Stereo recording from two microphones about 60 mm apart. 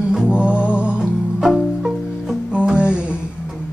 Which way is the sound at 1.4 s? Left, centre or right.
Centre.